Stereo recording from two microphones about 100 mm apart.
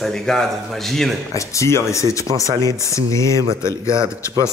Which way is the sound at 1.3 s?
30° left (ahead or behind).